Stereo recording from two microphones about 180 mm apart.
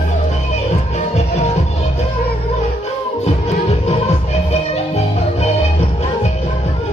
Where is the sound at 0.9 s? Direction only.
40° left (ahead or behind).